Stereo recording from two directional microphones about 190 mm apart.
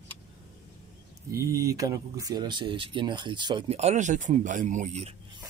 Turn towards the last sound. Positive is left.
turn(degrees=-40)  # may be behind; listen again after turning